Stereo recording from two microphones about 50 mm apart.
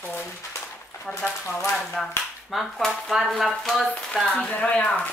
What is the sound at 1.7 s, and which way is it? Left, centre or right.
Speech, centre.